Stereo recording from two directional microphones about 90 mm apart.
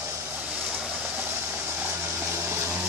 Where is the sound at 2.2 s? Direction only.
25° right (ahead or behind).